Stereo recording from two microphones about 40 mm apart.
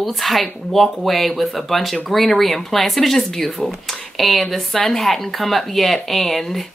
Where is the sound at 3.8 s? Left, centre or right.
Centre.